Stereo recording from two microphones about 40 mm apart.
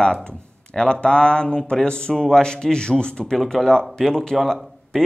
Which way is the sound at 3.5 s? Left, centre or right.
Centre.